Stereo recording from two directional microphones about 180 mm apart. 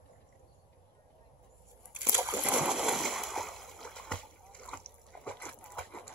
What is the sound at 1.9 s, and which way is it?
Splash, 10° right (ahead or behind).